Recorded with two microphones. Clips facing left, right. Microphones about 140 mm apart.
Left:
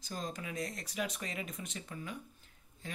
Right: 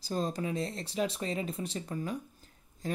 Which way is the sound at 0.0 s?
35° right (ahead or behind).